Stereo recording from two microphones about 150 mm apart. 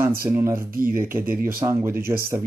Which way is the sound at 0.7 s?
70° right (ahead or behind).